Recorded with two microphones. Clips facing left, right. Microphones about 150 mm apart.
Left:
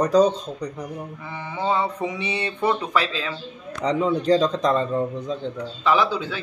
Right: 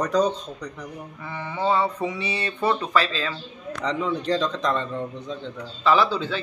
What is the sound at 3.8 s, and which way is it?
Speech, 40° left (ahead or behind).